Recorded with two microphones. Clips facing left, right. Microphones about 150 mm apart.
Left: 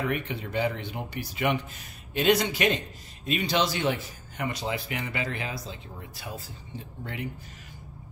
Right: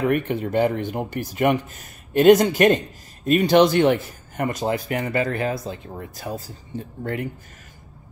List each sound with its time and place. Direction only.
0.0 s speech: 50° right (ahead or behind)